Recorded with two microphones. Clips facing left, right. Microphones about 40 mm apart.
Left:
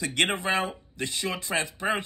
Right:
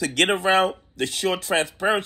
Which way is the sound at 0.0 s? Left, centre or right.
Right.